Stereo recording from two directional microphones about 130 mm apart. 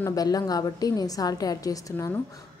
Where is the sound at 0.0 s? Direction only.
30° left (ahead or behind).